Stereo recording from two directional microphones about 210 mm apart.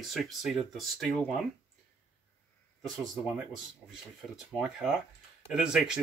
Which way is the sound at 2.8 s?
Centre (ahead or behind).